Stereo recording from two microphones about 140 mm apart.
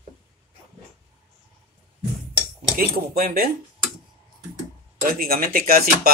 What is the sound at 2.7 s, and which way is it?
Speech, 90° right.